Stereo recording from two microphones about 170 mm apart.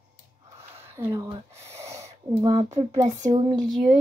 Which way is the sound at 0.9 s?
15° right (ahead or behind).